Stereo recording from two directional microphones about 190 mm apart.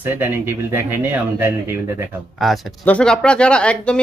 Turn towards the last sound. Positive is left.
turn(degrees=5)  # may be behind; listen again after turning